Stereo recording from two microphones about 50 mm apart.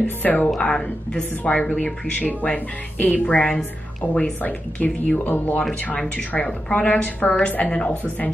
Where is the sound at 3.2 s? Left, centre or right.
Centre.